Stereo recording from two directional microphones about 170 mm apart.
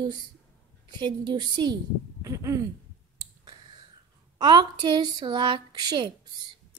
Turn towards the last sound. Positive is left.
turn(degrees=-25)  # may be behind; listen again after turning